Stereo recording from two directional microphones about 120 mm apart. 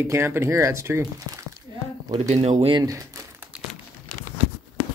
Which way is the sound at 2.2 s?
75° right (ahead or behind).